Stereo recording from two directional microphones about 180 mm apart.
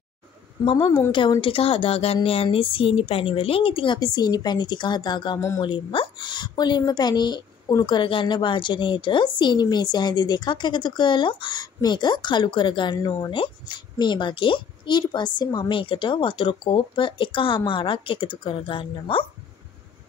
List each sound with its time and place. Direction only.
0.7 s a woman's voice: 25° left (ahead or behind)